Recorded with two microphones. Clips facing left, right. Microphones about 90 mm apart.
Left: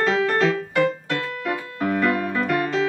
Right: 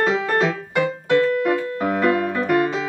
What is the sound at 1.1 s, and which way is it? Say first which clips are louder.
Music: right 9 dB; 25° right (ahead or behind).